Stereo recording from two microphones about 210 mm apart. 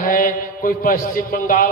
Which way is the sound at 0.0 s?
40° left (ahead or behind).